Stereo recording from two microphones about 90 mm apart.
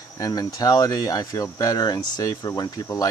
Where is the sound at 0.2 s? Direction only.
45° left (ahead or behind).